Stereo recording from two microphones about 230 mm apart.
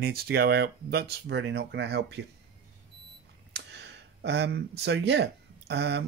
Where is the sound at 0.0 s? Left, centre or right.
Right.